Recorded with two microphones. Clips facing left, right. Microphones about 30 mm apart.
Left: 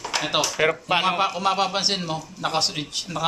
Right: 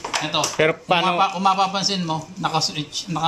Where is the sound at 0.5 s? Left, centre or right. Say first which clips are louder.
Right 6 dB; centre.